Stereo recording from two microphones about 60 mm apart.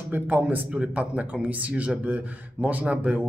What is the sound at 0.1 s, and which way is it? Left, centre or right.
A man's voice, right.